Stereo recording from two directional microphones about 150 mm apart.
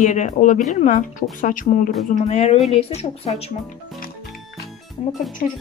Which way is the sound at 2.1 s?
45° left (ahead or behind).